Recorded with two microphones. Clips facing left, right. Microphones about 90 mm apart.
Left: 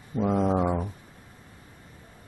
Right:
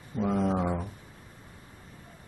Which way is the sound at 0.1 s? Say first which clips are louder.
Left 3 dB; 20° left (ahead or behind).